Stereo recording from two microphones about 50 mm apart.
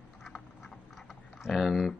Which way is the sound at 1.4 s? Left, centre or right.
Centre.